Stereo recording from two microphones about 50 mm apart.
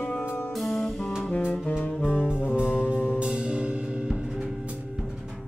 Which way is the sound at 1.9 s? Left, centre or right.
Centre.